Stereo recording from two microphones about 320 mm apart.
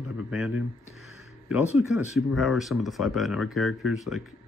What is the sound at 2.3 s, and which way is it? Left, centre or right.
Speech, centre.